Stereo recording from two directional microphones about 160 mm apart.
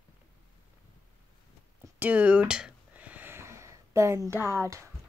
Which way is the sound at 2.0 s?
10° right (ahead or behind).